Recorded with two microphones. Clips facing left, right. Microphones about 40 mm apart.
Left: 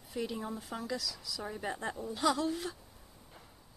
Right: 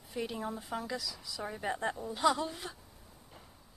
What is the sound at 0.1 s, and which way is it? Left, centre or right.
A woman's voice, centre.